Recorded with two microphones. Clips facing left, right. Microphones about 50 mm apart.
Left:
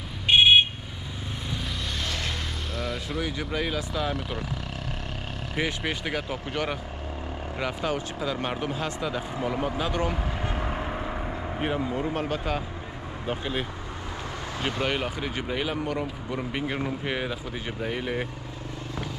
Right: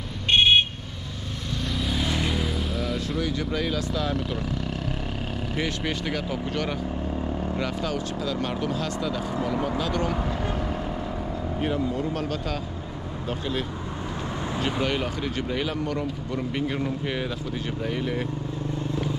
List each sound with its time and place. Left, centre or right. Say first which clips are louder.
0.3 s a sound: left 1 dB; centre
1.8 s vehicle: right 8 dB; centre
3.2 s speech: right 1 dB; centre
5.6 s speech: left 1 dB; centre
11.6 s speech: right 1 dB; left